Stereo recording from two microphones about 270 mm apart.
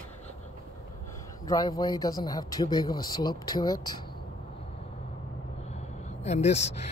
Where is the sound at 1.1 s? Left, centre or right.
Centre.